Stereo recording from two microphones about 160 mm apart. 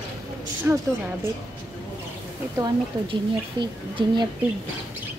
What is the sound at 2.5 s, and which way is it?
A woman's voice, 25° right (ahead or behind).